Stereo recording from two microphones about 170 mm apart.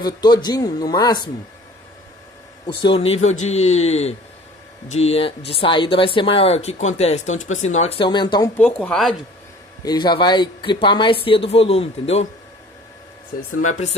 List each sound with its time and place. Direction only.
0.0 s speech: 25° left (ahead or behind)
2.8 s speech: 35° left (ahead or behind)
8.5 s speech: 5° left (ahead or behind)
9.8 s speech: 25° left (ahead or behind)
13.6 s speech: 45° left (ahead or behind)